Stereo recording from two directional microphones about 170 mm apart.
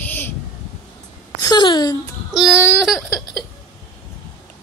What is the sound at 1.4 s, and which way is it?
Speech, 25° left (ahead or behind).